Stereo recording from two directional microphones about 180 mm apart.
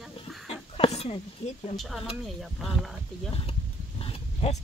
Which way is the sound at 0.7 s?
35° left (ahead or behind).